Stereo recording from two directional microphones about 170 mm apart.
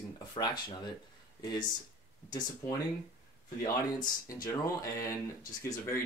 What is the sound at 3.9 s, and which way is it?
Speech, 20° left (ahead or behind).